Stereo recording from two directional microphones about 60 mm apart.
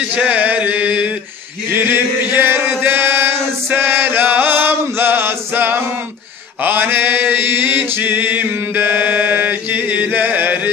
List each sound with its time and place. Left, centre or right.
0.1 s a sound: right
1.7 s male singing: right
6.6 s mantra: right